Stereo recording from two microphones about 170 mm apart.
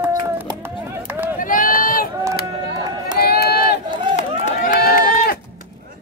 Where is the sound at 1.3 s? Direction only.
55° left (ahead or behind).